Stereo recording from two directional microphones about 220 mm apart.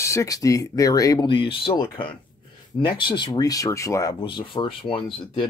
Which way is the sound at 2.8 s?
20° left (ahead or behind).